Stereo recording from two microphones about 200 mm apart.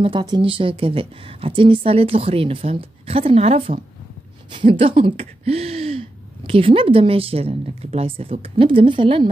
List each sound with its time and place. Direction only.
0.0 s speech: 25° right (ahead or behind)